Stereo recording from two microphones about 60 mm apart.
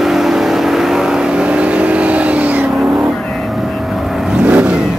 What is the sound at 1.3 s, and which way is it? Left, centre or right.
Vehicle, right.